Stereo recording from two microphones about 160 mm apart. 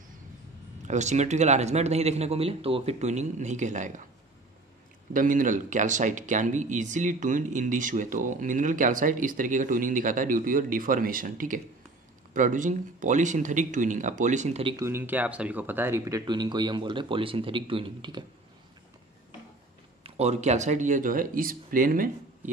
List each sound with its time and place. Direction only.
0.8 s speech: 45° right (ahead or behind)
5.1 s speech: 55° right (ahead or behind); by 14.8 s 40° right (ahead or behind)
14.8 s speech: 15° right (ahead or behind); by 18.2 s 30° right (ahead or behind)
20.0 s speech: 40° right (ahead or behind); by 22.5 s 60° right (ahead or behind)